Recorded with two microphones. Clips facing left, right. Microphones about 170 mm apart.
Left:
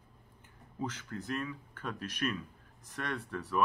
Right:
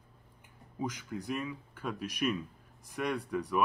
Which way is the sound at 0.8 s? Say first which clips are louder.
Right 2 dB; 10° right (ahead or behind).